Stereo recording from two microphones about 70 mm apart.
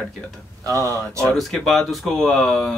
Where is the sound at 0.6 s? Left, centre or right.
Right.